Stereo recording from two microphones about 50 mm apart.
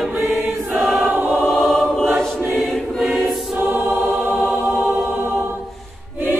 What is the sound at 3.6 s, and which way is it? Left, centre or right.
Choir, right.